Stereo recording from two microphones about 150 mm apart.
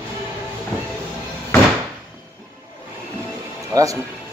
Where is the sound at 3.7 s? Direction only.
25° right (ahead or behind).